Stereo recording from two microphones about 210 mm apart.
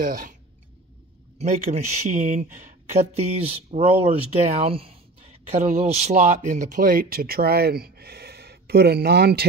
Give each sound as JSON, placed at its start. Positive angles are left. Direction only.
{"t": 0.0, "sound": "speech", "side_deg": -45}
{"t": 1.4, "sound": "speech", "side_deg": -30}